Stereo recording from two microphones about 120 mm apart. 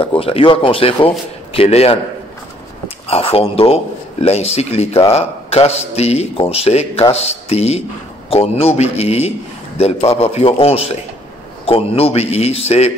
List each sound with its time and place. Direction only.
0.0 s a man's voice: 50° left (ahead or behind)
3.1 s a man's voice: 55° left (ahead or behind)